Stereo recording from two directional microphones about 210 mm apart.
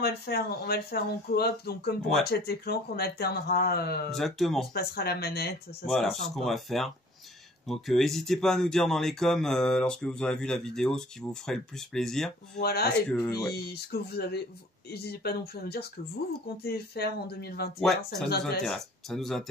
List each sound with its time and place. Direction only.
0.0 s speech: 50° left (ahead or behind)
4.1 s speech: centre (ahead or behind)
4.7 s speech: 50° left (ahead or behind)
5.9 s speech: centre (ahead or behind)
12.5 s speech: 50° left (ahead or behind)
13.1 s speech: 10° left (ahead or behind)
13.5 s speech: 50° left (ahead or behind)
17.7 s speech: centre (ahead or behind)